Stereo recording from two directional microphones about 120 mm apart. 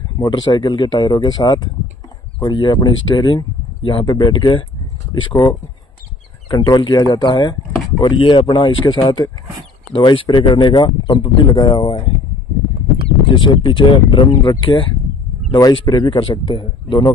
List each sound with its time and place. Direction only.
0.2 s speech: 35° left (ahead or behind)
13.3 s speech: 40° left (ahead or behind)
16.2 s speech: 45° left (ahead or behind)